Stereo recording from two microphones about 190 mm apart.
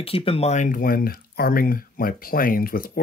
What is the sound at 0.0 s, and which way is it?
Speech, 30° left (ahead or behind).